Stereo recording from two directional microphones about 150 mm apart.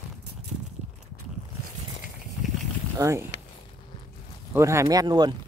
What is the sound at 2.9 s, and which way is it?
Speech, 15° right (ahead or behind).